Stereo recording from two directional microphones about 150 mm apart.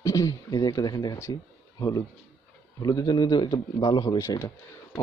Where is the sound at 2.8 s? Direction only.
25° left (ahead or behind).